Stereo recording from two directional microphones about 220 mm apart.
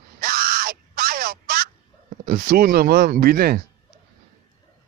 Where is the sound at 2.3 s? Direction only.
45° right (ahead or behind).